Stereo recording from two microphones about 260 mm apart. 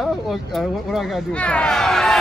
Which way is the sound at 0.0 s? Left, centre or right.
Centre.